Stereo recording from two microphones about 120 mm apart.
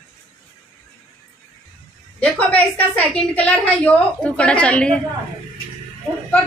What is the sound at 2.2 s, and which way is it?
A woman's voice, 10° left (ahead or behind).